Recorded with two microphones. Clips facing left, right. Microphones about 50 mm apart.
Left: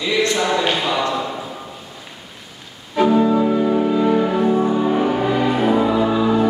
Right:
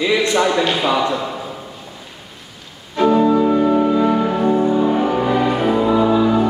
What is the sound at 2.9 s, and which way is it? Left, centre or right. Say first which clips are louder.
Music: right 1 dB; centre.